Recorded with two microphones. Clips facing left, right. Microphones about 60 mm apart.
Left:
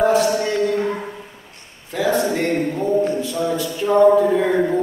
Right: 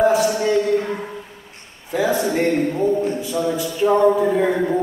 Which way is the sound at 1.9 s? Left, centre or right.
Centre.